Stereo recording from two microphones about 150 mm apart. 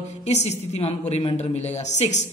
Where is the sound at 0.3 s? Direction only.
50° left (ahead or behind).